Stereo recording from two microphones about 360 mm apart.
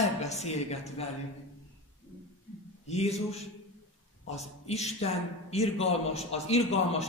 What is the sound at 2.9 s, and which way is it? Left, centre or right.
A man's voice, centre.